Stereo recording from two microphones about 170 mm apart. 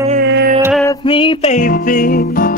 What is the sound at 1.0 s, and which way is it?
Music, 30° left (ahead or behind).